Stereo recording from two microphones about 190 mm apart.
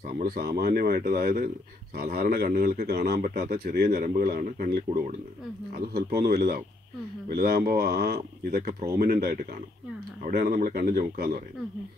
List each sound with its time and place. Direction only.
0.2 s speech: 50° right (ahead or behind)